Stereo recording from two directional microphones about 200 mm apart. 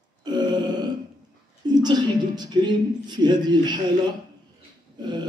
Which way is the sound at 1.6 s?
20° right (ahead or behind).